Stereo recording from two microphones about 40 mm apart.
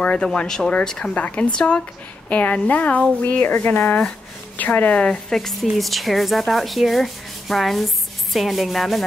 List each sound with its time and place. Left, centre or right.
0.0 s a sound: left
0.8 s speech: centre
1.1 s a woman's voice: left
4.9 s a woman's voice: left
5.3 s speech: centre
5.6 s speech: centre
6.5 s rub: centre